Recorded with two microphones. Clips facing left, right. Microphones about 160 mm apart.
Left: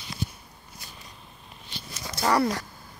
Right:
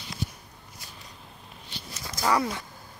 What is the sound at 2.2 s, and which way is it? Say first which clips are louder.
Speech: left 2 dB; 35° left (ahead or behind).